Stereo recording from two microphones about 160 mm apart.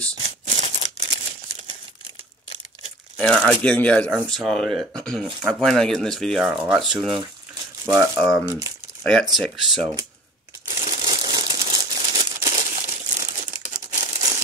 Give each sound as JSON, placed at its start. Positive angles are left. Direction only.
{"t": 0.5, "sound": "a sound", "side_deg": -45}
{"t": 3.2, "sound": "speech", "side_deg": 5}
{"t": 7.8, "sound": "speech", "side_deg": -20}
{"t": 8.2, "sound": "speech", "side_deg": 0}
{"t": 10.8, "sound": "crumpling", "side_deg": -30}